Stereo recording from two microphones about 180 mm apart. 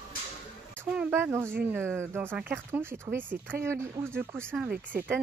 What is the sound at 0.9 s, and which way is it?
Speech, 10° right (ahead or behind).